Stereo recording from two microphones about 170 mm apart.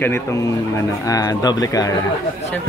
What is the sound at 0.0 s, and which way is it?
Speech, 15° left (ahead or behind).